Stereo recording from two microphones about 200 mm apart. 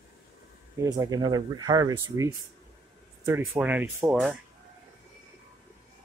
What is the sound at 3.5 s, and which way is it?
Speech, 10° right (ahead or behind).